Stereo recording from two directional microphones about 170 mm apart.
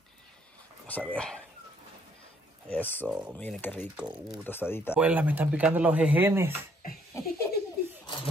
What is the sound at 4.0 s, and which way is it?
Speech, 5° right (ahead or behind).